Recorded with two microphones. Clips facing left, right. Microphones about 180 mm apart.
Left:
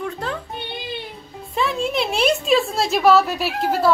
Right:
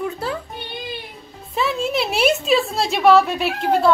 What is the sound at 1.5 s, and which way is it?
Speech, centre (ahead or behind).